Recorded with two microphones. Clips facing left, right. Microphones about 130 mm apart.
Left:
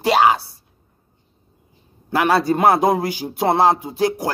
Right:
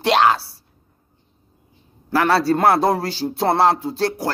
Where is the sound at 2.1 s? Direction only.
15° left (ahead or behind).